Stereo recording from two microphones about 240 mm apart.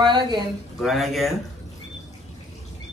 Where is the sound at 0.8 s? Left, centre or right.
Centre.